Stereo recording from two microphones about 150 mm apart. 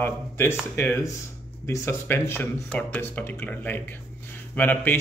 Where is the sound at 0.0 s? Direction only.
15° left (ahead or behind).